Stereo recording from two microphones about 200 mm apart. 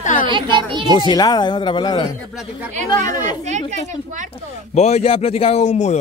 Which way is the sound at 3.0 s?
40° right (ahead or behind).